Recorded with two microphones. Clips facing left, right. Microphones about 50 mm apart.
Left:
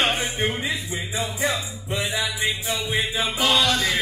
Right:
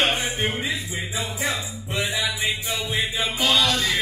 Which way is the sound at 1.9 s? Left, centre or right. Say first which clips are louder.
Even; centre.